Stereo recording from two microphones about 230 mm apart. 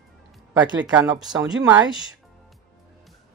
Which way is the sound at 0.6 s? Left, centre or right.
Centre.